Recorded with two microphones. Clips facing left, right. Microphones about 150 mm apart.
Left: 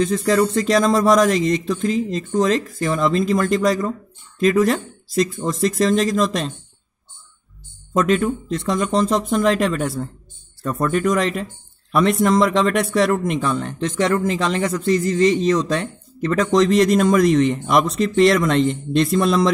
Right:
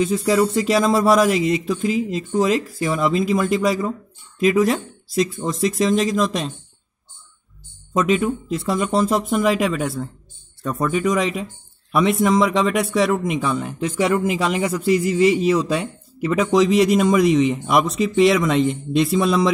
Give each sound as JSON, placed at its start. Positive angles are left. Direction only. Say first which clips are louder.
{"t": 0.0, "sound": "speech", "louder": "even", "side_deg": -5}
{"t": 7.9, "sound": "speech", "louder": "left 1 dB", "side_deg": 0}